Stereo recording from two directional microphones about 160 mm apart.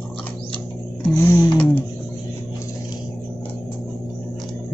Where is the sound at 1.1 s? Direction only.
15° left (ahead or behind).